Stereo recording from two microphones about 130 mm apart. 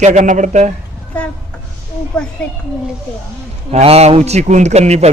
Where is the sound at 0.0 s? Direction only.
65° right (ahead or behind).